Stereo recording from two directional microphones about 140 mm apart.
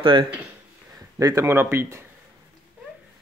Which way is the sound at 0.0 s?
35° right (ahead or behind).